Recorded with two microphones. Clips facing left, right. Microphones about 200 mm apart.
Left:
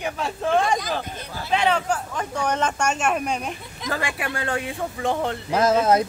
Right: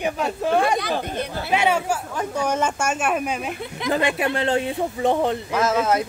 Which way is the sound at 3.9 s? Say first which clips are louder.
Right 6 dB; 20° right (ahead or behind).